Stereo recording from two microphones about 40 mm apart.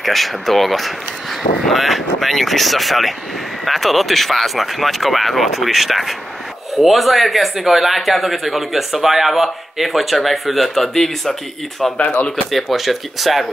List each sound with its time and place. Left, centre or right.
0.0 s speech: centre
12.0 s speech: left
12.4 s speech: centre